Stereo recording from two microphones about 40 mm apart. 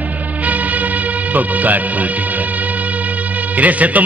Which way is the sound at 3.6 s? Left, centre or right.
Right.